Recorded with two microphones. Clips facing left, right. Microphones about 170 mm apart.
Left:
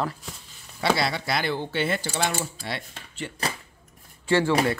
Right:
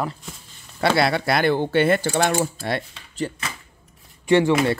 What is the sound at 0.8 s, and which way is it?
Speech, 60° right (ahead or behind).